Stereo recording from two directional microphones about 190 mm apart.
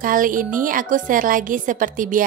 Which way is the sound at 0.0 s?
45° right (ahead or behind).